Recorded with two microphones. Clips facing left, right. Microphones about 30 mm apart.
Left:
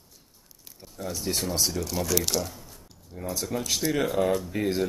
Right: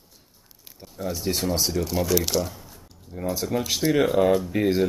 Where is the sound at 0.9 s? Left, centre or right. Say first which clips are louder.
Right 3 dB; centre.